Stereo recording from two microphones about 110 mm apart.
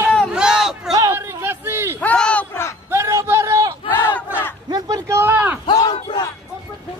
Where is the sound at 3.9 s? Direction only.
20° left (ahead or behind).